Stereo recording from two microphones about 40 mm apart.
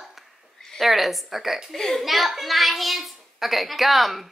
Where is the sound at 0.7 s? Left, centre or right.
Centre.